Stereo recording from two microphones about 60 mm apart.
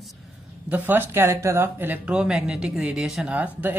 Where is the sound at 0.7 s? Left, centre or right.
Right.